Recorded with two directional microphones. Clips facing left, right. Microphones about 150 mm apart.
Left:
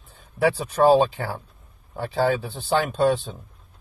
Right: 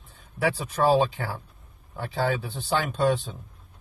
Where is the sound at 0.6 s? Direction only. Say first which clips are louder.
Left 4 dB; 35° left (ahead or behind).